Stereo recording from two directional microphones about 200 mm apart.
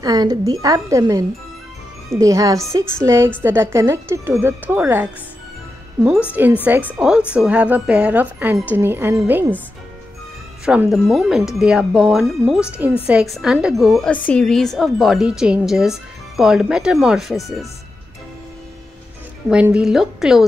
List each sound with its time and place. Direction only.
0.0 s a woman's voice: 20° right (ahead or behind)
6.3 s speech: 10° right (ahead or behind)
10.6 s a woman's voice: 5° right (ahead or behind)
19.5 s a woman's voice: 5° right (ahead or behind)